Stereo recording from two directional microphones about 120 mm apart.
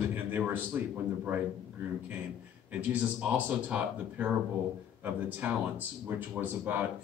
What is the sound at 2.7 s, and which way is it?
Speech, 10° right (ahead or behind).